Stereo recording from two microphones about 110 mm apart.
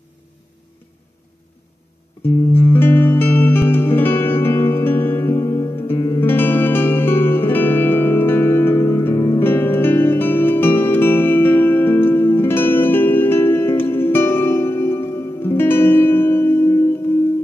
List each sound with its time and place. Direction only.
2.2 s music: 20° left (ahead or behind)